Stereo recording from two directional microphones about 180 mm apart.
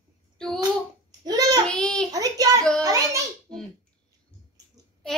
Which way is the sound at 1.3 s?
20° right (ahead or behind).